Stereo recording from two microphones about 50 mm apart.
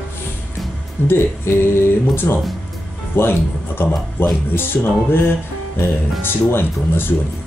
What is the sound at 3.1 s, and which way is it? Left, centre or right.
Speech, left.